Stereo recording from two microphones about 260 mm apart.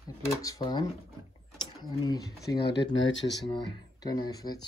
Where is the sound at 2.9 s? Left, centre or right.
Left.